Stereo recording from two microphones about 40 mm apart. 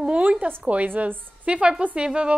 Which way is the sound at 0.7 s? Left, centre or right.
Right.